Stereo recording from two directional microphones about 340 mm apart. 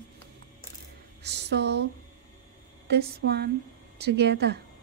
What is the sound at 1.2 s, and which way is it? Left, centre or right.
Speech, right.